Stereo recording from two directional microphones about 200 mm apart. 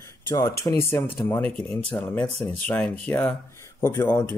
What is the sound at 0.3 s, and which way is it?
A man's voice, 15° left (ahead or behind).